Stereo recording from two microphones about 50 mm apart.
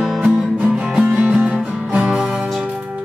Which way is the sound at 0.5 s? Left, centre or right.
Centre.